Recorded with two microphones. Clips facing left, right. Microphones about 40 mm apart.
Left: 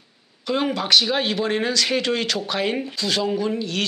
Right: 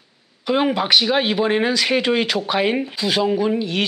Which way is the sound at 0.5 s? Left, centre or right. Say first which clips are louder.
Right 3 dB; centre.